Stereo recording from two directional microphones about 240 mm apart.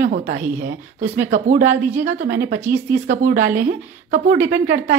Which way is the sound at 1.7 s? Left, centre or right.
Centre.